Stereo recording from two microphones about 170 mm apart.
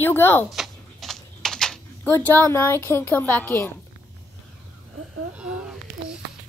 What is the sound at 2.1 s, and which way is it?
A woman's voice, 15° left (ahead or behind).